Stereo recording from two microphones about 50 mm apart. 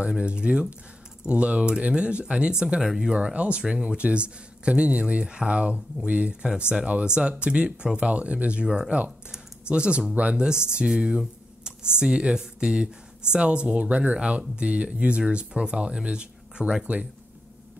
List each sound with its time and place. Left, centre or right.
0.2 s speech: right
8.6 s speech: centre
16.8 s speech: right